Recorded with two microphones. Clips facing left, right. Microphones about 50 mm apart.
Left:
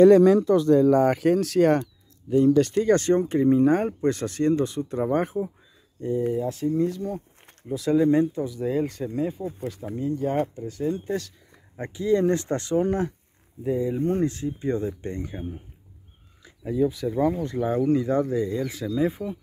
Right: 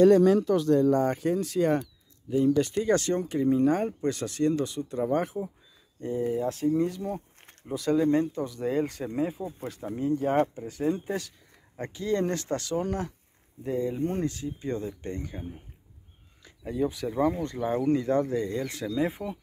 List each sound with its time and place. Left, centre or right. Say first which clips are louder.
1.0 s speech: left 6 dB; left
2.3 s speech: left 5 dB; centre
2.9 s speech: left 5 dB; left
5.9 s speech: left 3 dB; centre
7.7 s speech: left 4 dB; centre
8.5 s speech: left 2 dB; centre
9.9 s speech: right 1 dB; centre
11.1 s speech: left 3 dB; centre
11.7 s speech: left 6 dB; centre
12.4 s speech: left 5 dB; left
13.6 s speech: left 4 dB; centre
16.6 s speech: left 5 dB; centre